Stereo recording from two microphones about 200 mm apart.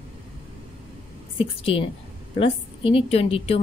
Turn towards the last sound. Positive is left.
turn(degrees=30)  # may be behind; listen again after turning